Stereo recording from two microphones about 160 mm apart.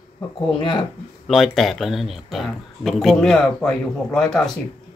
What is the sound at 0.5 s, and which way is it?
Speech, 30° left (ahead or behind).